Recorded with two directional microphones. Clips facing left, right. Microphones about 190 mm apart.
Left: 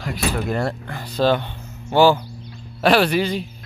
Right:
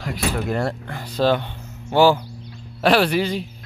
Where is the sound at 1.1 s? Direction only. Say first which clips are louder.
Left 1 dB; 5° right (ahead or behind).